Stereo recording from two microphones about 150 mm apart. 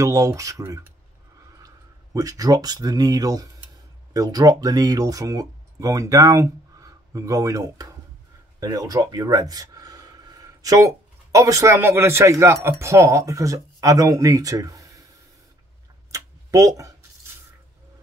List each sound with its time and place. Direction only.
0.0 s speech: 20° right (ahead or behind)
2.1 s speech: 25° right (ahead or behind)
16.1 s scissors: 20° right (ahead or behind)